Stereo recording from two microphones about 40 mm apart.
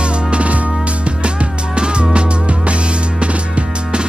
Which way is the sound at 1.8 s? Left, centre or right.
Right.